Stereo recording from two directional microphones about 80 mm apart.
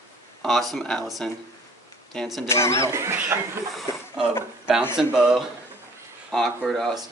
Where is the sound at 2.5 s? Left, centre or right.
Left.